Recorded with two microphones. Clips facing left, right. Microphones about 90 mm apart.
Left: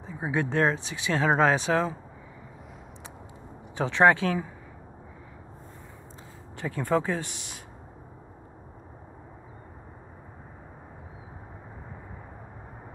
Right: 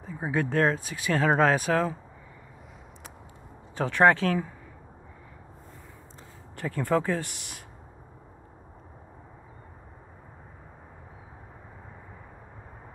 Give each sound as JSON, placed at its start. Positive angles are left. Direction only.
{"t": 0.0, "sound": "speech", "side_deg": 20}
{"t": 3.7, "sound": "speech", "side_deg": 15}
{"t": 6.5, "sound": "speech", "side_deg": 20}